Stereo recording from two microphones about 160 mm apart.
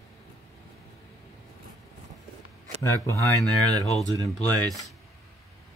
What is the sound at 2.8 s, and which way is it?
Speech, 20° left (ahead or behind).